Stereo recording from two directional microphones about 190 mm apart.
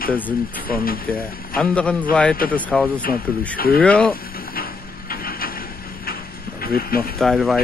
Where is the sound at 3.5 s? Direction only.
50° left (ahead or behind).